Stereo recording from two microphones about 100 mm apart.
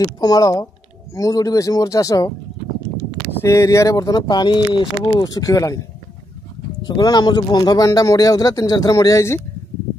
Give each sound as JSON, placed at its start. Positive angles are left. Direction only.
{"t": 0.0, "sound": "speech", "side_deg": 40}
{"t": 3.3, "sound": "speech", "side_deg": 30}
{"t": 7.0, "sound": "speech", "side_deg": 45}